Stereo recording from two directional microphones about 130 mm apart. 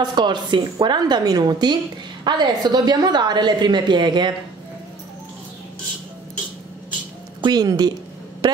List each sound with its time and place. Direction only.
0.0 s a woman's voice: 35° right (ahead or behind)
7.4 s a woman's voice: 30° right (ahead or behind)